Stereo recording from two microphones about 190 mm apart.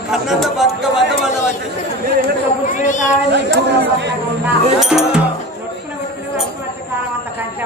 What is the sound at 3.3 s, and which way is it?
Speech, 65° right (ahead or behind).